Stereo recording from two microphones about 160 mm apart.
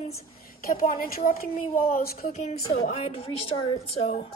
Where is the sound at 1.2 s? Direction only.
60° left (ahead or behind).